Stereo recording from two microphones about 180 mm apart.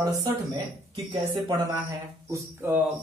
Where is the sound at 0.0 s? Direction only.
20° right (ahead or behind).